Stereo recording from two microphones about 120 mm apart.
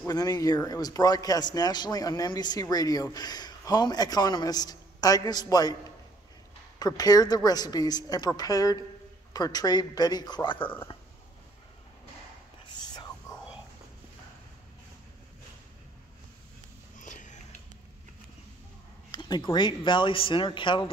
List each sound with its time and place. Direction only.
0.0 s a man's voice: 30° left (ahead or behind)
6.8 s a man's voice: 30° left (ahead or behind)
12.8 s whispering: 35° left (ahead or behind)
17.0 s sniff: 90° left
19.1 s speech: 35° left (ahead or behind)